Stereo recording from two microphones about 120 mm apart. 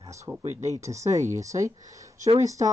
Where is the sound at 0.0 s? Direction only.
25° right (ahead or behind).